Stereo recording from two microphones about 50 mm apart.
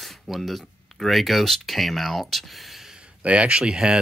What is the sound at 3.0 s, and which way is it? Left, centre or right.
Speech, right.